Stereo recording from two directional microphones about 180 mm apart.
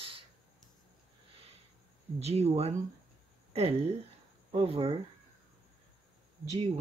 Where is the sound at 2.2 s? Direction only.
35° right (ahead or behind).